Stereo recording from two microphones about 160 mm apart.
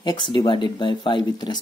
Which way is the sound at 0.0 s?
30° left (ahead or behind).